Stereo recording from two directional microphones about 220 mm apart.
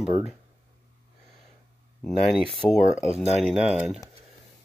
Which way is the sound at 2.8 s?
35° left (ahead or behind).